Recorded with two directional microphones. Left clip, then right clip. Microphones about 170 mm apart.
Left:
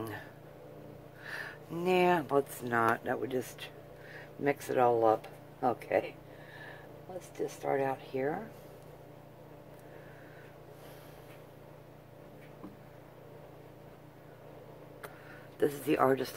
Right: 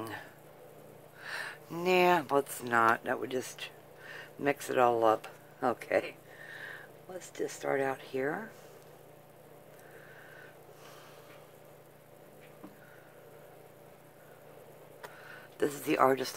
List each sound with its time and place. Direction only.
0.0 s a sound: 10° right (ahead or behind); by 6.1 s 30° right (ahead or behind)
7.2 s speech: 35° right (ahead or behind)
15.6 s speech: 20° right (ahead or behind)